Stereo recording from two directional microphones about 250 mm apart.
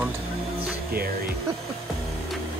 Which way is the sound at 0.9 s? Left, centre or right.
Right.